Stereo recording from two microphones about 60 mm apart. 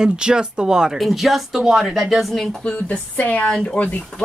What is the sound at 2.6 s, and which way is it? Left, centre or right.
Speech, centre.